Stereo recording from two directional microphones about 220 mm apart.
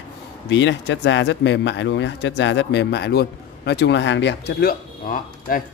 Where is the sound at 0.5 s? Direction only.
55° left (ahead or behind).